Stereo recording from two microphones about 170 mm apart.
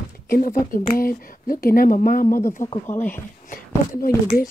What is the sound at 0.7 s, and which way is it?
Speech, 55° left (ahead or behind).